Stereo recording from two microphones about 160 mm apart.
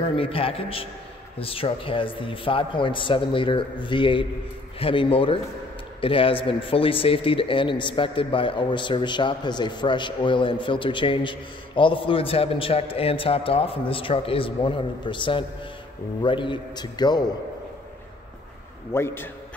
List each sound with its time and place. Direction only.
0.0 s a man's voice: 35° left (ahead or behind)
18.9 s a man's voice: 15° left (ahead or behind)